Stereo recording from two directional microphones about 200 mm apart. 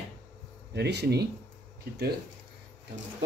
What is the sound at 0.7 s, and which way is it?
Speech, 55° right (ahead or behind).